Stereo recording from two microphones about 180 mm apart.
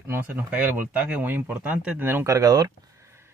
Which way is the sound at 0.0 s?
10° right (ahead or behind).